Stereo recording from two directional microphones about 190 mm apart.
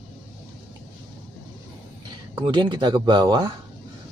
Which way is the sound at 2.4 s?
25° right (ahead or behind).